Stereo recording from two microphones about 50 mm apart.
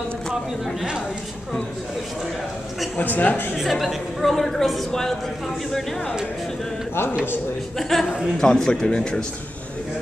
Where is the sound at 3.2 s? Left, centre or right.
Left.